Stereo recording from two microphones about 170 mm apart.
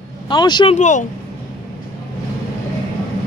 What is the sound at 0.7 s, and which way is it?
Speech, 45° left (ahead or behind).